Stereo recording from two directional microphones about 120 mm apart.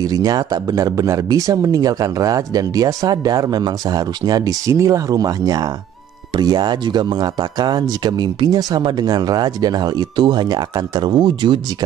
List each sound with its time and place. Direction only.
0.0 s speech: 30° right (ahead or behind)